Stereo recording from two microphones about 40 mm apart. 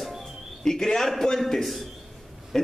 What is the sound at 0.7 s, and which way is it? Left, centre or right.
A man's voice, centre.